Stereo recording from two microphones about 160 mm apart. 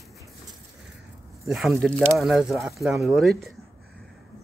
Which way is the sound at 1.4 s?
Centre (ahead or behind).